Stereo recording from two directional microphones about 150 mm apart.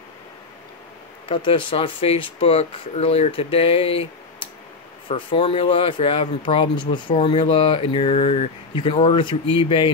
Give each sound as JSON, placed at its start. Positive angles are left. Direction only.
{"t": 1.3, "sound": "speech", "side_deg": 35}